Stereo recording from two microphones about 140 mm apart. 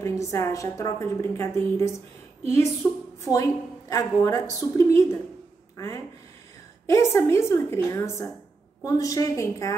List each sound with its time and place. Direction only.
0.0 s a woman's voice: 20° left (ahead or behind)
6.9 s a woman's voice: 20° left (ahead or behind)